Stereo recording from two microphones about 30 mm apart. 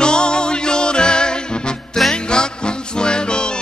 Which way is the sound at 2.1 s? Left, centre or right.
Left.